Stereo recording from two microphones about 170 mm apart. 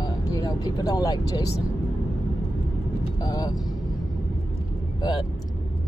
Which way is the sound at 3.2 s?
25° left (ahead or behind).